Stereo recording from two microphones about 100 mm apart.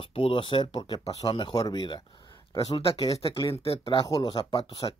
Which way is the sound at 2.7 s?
60° left (ahead or behind).